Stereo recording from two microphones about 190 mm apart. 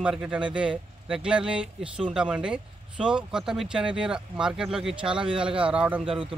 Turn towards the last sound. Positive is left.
turn(degrees=-30)  # may be behind; listen again after turning